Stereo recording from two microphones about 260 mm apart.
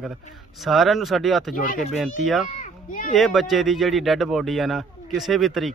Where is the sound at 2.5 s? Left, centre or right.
Left.